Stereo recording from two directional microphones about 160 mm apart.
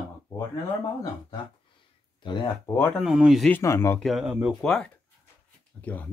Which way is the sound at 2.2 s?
30° left (ahead or behind).